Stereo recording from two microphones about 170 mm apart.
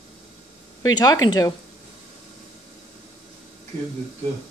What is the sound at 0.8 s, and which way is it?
Speech, 20° left (ahead or behind).